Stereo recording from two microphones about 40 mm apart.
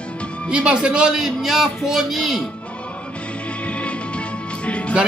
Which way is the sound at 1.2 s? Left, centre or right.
Centre.